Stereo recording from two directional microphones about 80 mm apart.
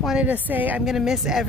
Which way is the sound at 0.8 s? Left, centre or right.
Centre.